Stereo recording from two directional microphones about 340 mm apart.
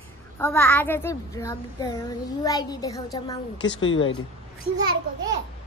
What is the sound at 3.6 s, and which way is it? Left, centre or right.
Speech, left.